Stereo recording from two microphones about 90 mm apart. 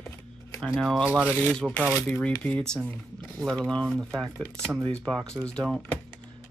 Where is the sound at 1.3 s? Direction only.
15° left (ahead or behind).